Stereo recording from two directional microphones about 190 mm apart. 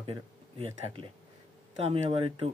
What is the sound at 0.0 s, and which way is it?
Speech, 30° right (ahead or behind).